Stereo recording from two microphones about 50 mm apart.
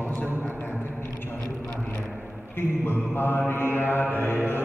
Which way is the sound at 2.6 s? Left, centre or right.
Left.